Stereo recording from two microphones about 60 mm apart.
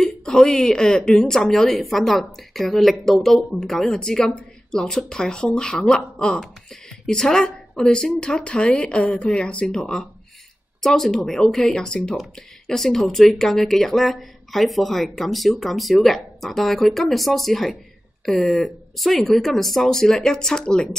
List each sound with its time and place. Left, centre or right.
0.0 s a woman's voice: centre